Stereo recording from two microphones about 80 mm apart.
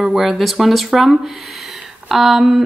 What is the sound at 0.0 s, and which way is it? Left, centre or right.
Speech, centre.